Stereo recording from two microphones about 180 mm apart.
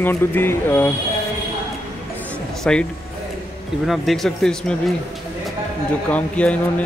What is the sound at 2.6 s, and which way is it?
Speech, 5° left (ahead or behind).